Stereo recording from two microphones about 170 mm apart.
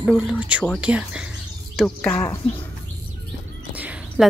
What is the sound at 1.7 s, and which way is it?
Speech, 5° left (ahead or behind).